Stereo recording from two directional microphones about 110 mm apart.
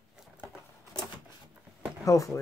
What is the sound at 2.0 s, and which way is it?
Speech, 30° left (ahead or behind).